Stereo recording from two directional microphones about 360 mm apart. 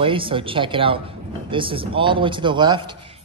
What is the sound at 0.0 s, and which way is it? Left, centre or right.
A man's voice, centre.